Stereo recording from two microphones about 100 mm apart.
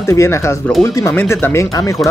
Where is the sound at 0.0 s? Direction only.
30° left (ahead or behind).